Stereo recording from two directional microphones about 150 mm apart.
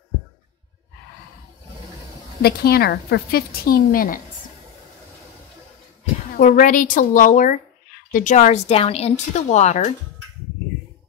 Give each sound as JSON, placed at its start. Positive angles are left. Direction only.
{"t": 2.4, "sound": "a woman's voice", "side_deg": 90}
{"t": 6.3, "sound": "a woman's voice", "side_deg": 65}